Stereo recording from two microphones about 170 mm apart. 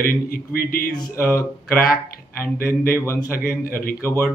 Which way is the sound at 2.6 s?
60° left (ahead or behind).